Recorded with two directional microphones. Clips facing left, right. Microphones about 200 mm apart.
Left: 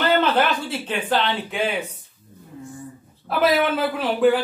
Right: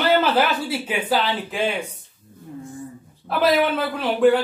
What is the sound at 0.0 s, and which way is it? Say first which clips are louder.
Speech: right 1 dB; 5° right (ahead or behind).